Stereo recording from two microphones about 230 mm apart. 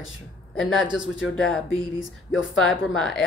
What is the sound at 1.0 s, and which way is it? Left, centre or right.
Speech, left.